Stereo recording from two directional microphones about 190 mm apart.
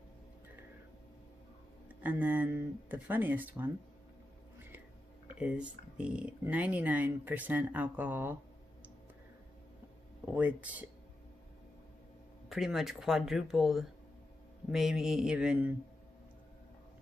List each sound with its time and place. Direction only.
2.0 s speech: 10° right (ahead or behind)
5.3 s speech: 5° right (ahead or behind)
10.3 s speech: 10° right (ahead or behind)
12.4 s speech: centre (ahead or behind)